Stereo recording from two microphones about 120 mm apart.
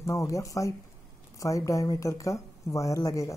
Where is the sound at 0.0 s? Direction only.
25° left (ahead or behind).